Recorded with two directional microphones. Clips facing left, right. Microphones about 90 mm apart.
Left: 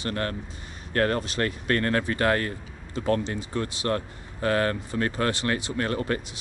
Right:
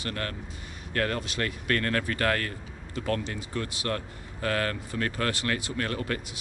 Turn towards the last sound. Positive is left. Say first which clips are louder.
# left 4 dB
turn(degrees=30)  # may be behind; listen again after turning